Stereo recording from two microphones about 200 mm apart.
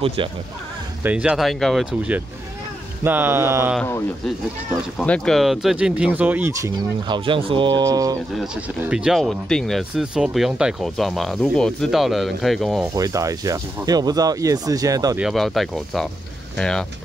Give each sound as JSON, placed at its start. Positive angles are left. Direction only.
{"t": 0.0, "sound": "speech", "side_deg": -25}
{"t": 1.0, "sound": "speech", "side_deg": -5}
{"t": 4.6, "sound": "speech", "side_deg": 5}
{"t": 7.1, "sound": "speech", "side_deg": -25}
{"t": 8.8, "sound": "speech", "side_deg": -5}
{"t": 12.9, "sound": "speech", "side_deg": -15}
{"t": 15.1, "sound": "speech", "side_deg": 0}